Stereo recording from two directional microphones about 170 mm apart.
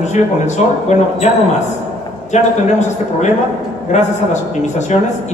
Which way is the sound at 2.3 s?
45° left (ahead or behind).